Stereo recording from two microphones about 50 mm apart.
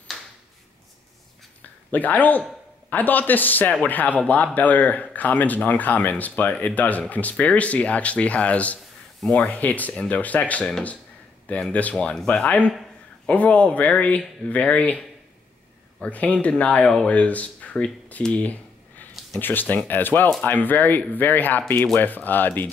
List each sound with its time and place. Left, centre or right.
1.6 s a sound: left
2.9 s speech: left
11.7 s speech: left
16.1 s speech: left
16.8 s speech: centre
17.1 s speech: left
18.3 s a sound: left
19.4 s speech: left